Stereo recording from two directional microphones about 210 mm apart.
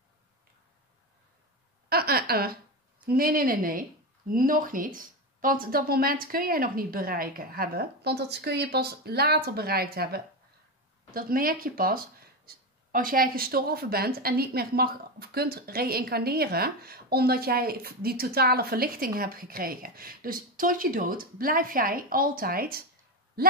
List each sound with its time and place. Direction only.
1.9 s speech: 45° right (ahead or behind)